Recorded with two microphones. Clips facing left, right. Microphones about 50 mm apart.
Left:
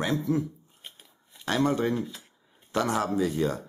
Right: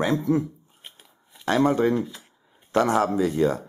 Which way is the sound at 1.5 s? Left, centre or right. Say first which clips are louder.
Right 5 dB; right.